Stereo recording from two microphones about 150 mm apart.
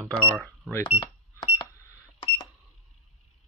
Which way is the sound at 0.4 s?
15° left (ahead or behind).